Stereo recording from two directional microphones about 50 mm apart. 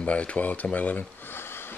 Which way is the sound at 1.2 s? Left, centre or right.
Left.